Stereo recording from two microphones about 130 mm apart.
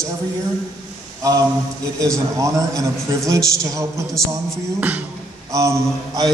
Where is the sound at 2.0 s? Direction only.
25° right (ahead or behind).